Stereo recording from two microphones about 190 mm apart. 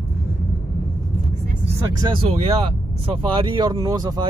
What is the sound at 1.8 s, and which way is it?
Speech, 25° right (ahead or behind).